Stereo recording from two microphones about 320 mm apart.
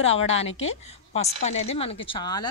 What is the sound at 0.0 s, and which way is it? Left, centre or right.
A woman's voice, centre.